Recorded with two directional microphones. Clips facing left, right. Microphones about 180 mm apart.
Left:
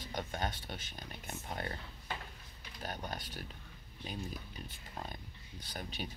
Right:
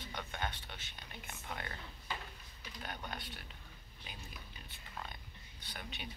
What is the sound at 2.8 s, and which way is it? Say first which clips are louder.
Speech: left 3 dB; 40° left (ahead or behind).